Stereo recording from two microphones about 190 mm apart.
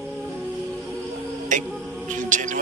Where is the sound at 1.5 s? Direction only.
40° right (ahead or behind).